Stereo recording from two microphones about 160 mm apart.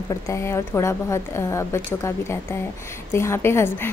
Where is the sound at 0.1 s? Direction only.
20° left (ahead or behind).